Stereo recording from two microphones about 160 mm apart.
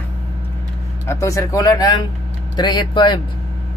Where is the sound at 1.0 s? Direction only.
20° left (ahead or behind).